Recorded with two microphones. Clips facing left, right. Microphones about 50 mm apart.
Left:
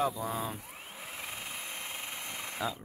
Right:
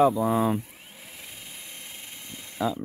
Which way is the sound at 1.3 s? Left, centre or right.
Left.